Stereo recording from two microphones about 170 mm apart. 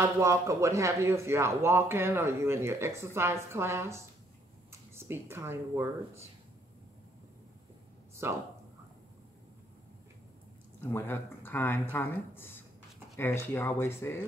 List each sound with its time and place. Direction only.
0.2 s a man's voice: 15° right (ahead or behind)
8.2 s a man's voice: 15° right (ahead or behind)
10.8 s speech: 15° left (ahead or behind)